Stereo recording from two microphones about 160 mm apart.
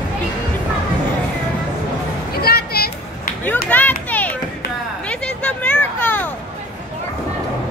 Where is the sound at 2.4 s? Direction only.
80° left.